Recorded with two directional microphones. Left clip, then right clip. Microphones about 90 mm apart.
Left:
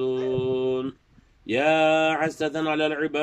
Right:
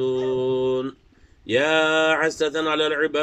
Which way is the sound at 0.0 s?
35° left (ahead or behind).